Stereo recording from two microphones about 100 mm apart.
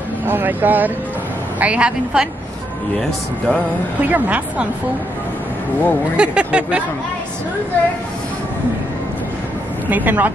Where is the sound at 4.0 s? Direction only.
15° right (ahead or behind).